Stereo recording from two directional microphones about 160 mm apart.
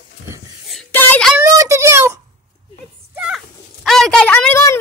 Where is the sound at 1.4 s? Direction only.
20° right (ahead or behind).